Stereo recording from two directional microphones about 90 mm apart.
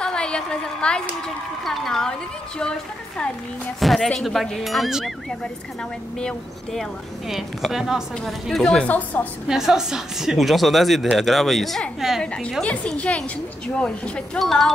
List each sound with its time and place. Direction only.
0.0 s a woman's voice: 10° left (ahead or behind)
3.8 s speech: centre (ahead or behind)
6.1 s speech: 5° left (ahead or behind)
8.8 s a woman's voice: 15° left (ahead or behind)
9.5 s a woman's voice: 5° right (ahead or behind)